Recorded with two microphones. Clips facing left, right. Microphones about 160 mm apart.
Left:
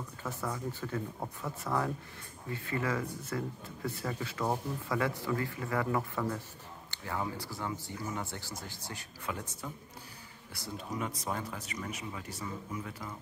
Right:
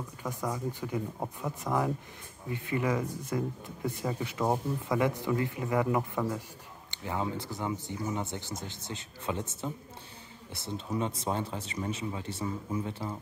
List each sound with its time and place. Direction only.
0.2 s speech: 15° right (ahead or behind)